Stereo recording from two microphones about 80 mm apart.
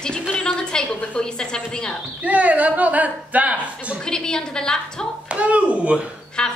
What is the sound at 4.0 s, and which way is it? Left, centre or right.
A woman's voice, centre.